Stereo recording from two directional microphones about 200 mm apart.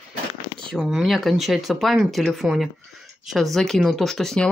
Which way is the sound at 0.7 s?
Centre (ahead or behind).